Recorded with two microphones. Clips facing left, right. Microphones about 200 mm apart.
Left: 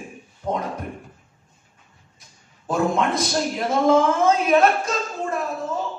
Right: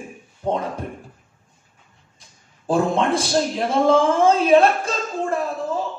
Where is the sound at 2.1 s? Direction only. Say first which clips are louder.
Even; 30° right (ahead or behind).